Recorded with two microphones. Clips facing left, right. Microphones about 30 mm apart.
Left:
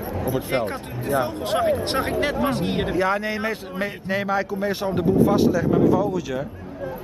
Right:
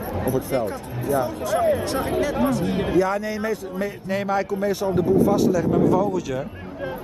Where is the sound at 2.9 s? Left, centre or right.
Left.